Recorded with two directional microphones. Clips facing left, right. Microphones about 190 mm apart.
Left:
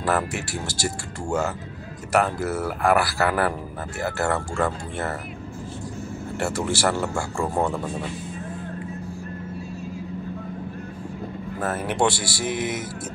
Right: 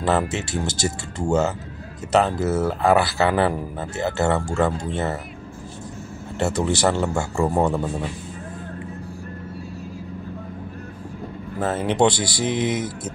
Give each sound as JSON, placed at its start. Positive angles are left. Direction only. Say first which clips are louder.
{"t": 0.0, "sound": "speech", "louder": "right 3 dB", "side_deg": -20}
{"t": 6.3, "sound": "speech", "louder": "right 4 dB", "side_deg": -20}
{"t": 11.6, "sound": "speech", "louder": "right 4 dB", "side_deg": -20}